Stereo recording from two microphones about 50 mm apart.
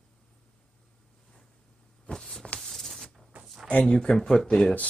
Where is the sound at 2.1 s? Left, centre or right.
Centre.